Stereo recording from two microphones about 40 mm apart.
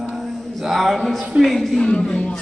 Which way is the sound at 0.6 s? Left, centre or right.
Centre.